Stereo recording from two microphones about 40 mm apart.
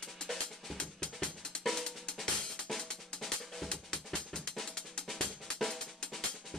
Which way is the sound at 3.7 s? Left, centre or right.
Left.